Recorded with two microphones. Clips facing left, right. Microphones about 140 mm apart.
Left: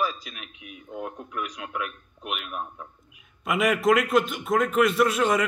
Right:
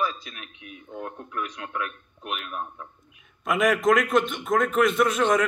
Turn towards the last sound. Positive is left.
turn(degrees=5)  # may be behind; listen again after turning